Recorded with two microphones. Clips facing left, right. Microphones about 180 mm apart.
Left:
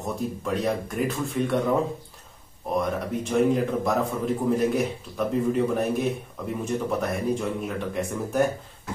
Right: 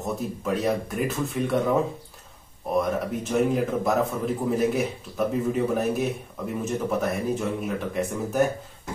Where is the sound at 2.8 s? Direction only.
5° right (ahead or behind).